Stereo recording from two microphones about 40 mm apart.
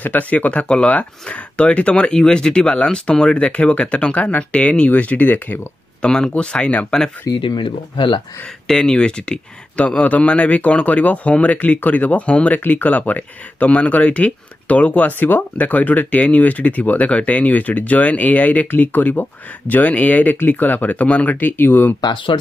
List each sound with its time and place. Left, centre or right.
0.0 s speech: left
2.1 s speech: centre; by 5.6 s left
6.0 s speech: centre
8.6 s speech: centre
9.8 s speech: left
12.5 s speech: left
15.1 s speech: left
15.5 s speech: left
18.8 s speech: left